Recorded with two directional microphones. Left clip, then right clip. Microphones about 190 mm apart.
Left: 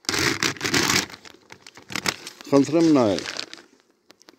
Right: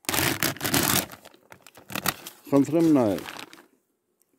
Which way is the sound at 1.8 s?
60° right (ahead or behind).